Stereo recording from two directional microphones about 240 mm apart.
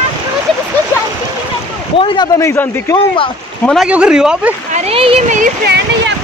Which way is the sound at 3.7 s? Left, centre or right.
Centre.